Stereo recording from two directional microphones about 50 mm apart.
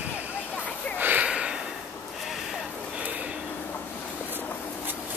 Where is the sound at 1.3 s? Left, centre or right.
Right.